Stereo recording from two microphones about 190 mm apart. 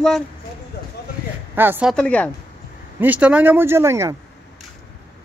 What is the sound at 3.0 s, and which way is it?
Speech, 10° right (ahead or behind).